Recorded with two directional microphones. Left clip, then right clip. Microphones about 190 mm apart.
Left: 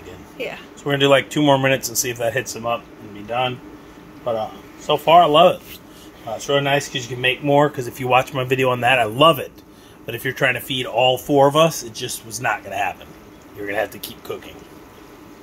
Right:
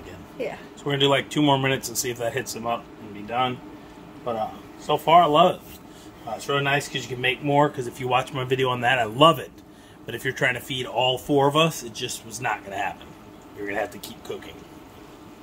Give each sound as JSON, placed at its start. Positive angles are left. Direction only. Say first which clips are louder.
{"t": 0.8, "sound": "speech", "louder": "left 6 dB", "side_deg": 15}
{"t": 4.8, "sound": "speech", "louder": "left 4 dB", "side_deg": 15}